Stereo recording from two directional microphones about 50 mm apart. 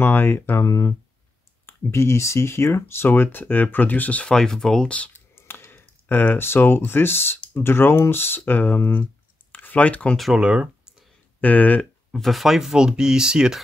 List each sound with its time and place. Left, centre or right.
0.0 s speech: left
1.7 s speech: left
4.3 s speech: centre
5.3 s clicking: left
7.5 s speech: left
8.4 s speech: left
10.3 s speech: right
11.4 s speech: left
12.1 s speech: centre